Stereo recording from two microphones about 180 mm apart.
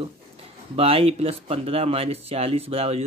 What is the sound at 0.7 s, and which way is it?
Speech, 35° right (ahead or behind).